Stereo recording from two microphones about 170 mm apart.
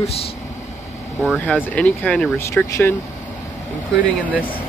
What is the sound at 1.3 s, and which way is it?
Speech, 10° left (ahead or behind).